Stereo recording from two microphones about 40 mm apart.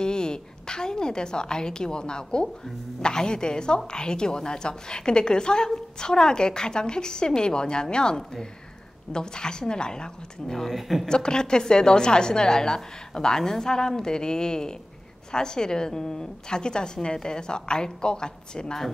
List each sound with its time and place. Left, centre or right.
0.0 s a woman's voice: centre
10.7 s a woman's voice: centre
11.1 s a woman's voice: centre